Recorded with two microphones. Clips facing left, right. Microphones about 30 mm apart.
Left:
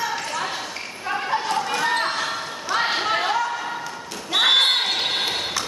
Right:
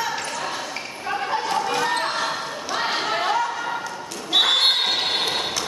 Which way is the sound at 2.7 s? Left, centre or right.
Centre.